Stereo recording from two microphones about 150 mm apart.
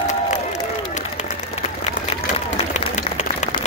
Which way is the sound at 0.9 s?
50° left (ahead or behind).